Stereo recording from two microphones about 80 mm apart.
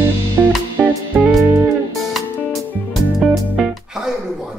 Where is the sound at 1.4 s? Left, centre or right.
Right.